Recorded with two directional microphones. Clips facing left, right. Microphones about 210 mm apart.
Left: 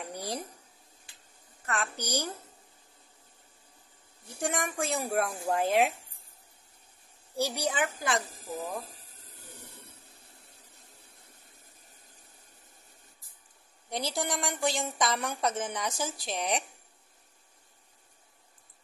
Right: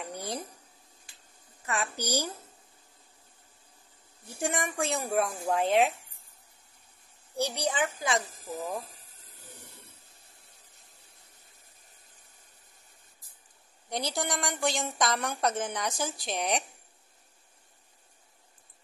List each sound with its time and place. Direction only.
0.0 s speech: centre (ahead or behind)
1.7 s a woman's voice: 10° right (ahead or behind)
4.4 s a woman's voice: centre (ahead or behind)
7.3 s a woman's voice: 10° left (ahead or behind)
13.8 s a woman's voice: 5° left (ahead or behind)